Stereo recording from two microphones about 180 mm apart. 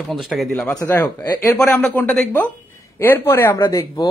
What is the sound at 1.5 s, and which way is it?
A woman's voice, 5° left (ahead or behind).